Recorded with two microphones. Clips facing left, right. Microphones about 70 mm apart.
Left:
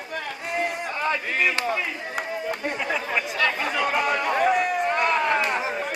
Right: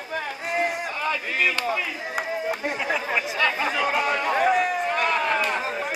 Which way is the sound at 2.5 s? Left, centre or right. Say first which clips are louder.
Even; centre.